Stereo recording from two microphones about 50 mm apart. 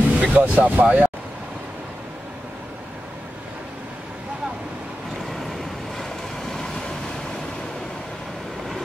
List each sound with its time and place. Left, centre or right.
0.1 s speech: right
5.3 s vehicle: centre